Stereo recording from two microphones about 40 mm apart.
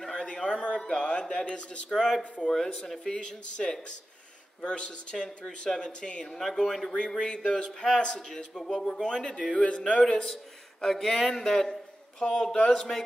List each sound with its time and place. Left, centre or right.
0.0 s a sound: centre
0.8 s speech: centre
1.9 s speech: centre; by 6.2 s left
6.2 s speech: centre
7.1 s speech: centre
10.0 s speech: centre